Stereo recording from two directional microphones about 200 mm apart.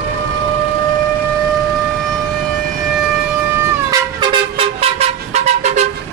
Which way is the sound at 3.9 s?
25° right (ahead or behind).